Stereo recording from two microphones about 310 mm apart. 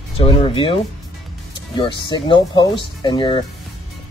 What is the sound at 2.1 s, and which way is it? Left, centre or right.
Speech, centre.